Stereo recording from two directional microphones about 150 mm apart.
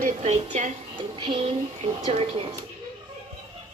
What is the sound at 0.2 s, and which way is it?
Speech, 50° right (ahead or behind).